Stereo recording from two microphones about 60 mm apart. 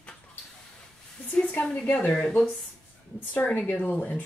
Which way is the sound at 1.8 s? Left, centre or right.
Left.